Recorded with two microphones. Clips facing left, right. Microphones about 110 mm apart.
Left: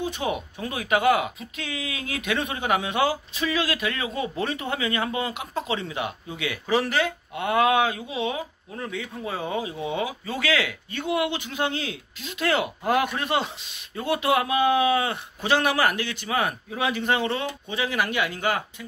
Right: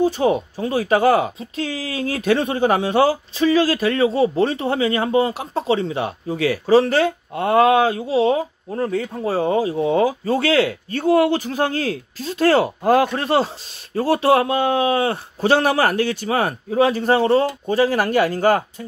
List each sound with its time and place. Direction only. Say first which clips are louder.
0.0 s speech: right 10 dB; 35° right (ahead or behind)